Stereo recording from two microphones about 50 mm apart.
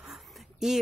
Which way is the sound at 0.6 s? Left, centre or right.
Centre.